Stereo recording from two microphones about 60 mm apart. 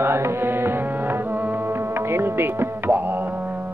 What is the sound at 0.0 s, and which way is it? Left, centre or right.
Tabla, right.